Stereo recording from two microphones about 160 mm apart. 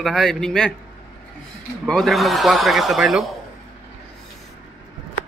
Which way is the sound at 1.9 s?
Centre (ahead or behind).